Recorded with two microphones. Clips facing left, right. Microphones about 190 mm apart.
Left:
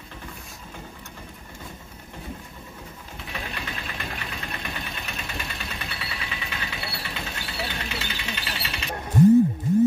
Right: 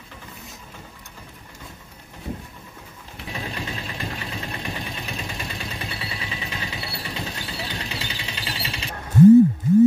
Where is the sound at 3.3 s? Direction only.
30° right (ahead or behind).